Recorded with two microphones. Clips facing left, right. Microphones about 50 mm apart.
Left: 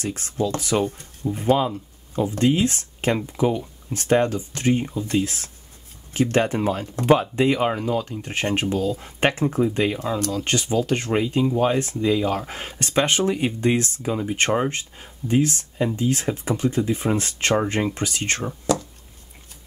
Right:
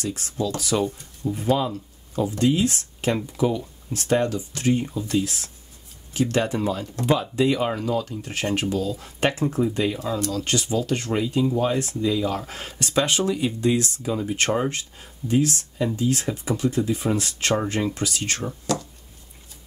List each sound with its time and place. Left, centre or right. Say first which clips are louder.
0.0 s speech: left 2 dB; left
14.1 s speech: even; centre
14.7 s speech: left 1 dB; left
18.4 s speech: left 3 dB; left